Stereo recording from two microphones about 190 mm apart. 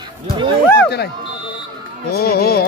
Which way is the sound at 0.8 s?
60° left (ahead or behind).